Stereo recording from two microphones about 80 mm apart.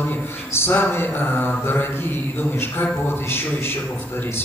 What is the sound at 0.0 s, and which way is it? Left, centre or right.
Mantra, left.